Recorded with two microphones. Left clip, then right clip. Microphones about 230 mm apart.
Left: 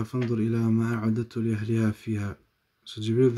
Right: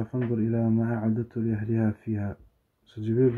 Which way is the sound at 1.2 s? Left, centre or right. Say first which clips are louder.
Left 1 dB; centre.